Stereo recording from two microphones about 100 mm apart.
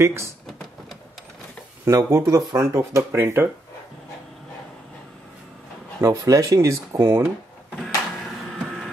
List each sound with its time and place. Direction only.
0.0 s speech: 30° right (ahead or behind)
1.9 s speech: 30° right (ahead or behind)
5.9 s speech: 30° right (ahead or behind)
8.5 s a sound: centre (ahead or behind)